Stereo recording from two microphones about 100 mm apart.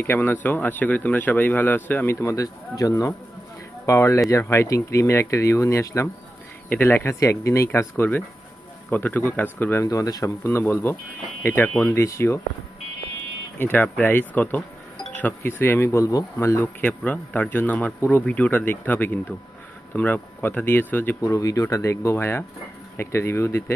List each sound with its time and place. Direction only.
0.0 s speech: 20° left (ahead or behind)
9.8 s speech: 40° left (ahead or behind)
13.6 s speech: 20° left (ahead or behind)
16.3 s a man's voice: 25° left (ahead or behind)
21.2 s speech: 35° left (ahead or behind)